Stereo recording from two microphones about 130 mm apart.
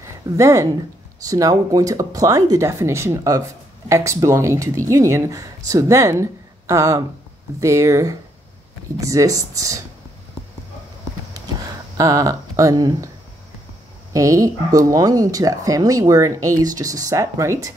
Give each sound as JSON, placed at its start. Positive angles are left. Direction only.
{"t": 0.0, "sound": "speech", "side_deg": -25}
{"t": 12.0, "sound": "speech", "side_deg": -25}
{"t": 14.1, "sound": "speech", "side_deg": -25}